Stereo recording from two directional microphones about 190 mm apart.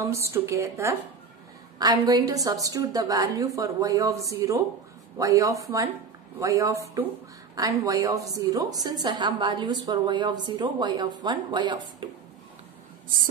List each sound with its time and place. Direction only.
0.0 s a woman's voice: 15° right (ahead or behind)